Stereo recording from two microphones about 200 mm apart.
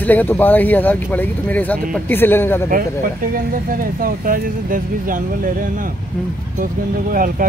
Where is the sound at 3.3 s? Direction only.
45° right (ahead or behind).